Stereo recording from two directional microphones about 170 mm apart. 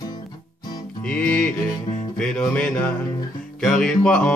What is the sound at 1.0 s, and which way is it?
Music, 5° left (ahead or behind).